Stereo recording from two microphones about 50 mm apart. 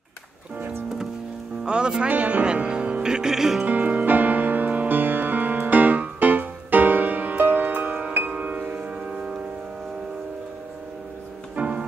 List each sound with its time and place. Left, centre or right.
1.7 s speech: centre
3.6 s music: right
11.5 s music: right